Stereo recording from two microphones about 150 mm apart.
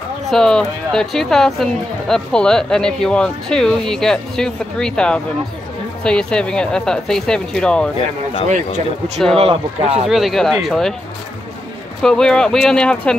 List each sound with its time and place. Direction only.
0.3 s speech: 5° left (ahead or behind)
8.5 s speech: 55° right (ahead or behind)
9.4 s speech: 40° right (ahead or behind)
10.0 s speech: centre (ahead or behind)
12.0 s speech: 5° left (ahead or behind)